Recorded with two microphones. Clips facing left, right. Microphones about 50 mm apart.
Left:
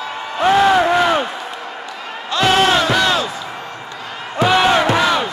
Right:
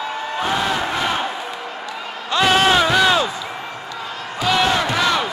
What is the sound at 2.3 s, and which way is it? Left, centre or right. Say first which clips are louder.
Music: left 1 dB; centre.